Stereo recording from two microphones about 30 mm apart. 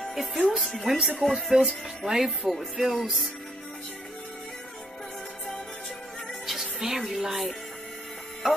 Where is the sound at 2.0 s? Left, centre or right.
Centre.